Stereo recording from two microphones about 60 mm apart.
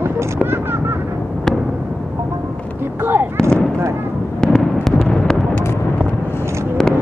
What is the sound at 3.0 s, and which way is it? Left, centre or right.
Artillery fire, right.